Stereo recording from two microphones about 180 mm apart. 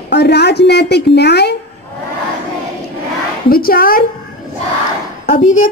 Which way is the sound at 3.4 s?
55° left (ahead or behind).